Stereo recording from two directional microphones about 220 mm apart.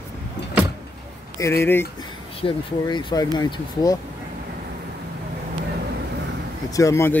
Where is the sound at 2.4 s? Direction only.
25° left (ahead or behind).